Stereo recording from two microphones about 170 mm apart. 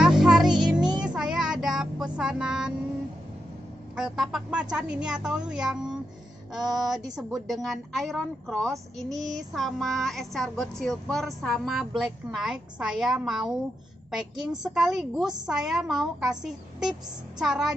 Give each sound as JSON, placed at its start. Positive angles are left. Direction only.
{"t": 0.0, "sound": "music", "side_deg": 0}
{"t": 1.0, "sound": "child singing", "side_deg": -5}
{"t": 2.1, "sound": "speech", "side_deg": -5}
{"t": 3.9, "sound": "speech", "side_deg": 0}
{"t": 7.0, "sound": "speech", "side_deg": -25}
{"t": 7.6, "sound": "speech", "side_deg": 0}